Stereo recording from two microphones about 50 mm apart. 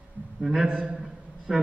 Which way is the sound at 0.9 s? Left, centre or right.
Centre.